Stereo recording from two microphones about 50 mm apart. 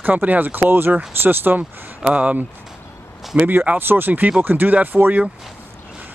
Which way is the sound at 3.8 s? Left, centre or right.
Right.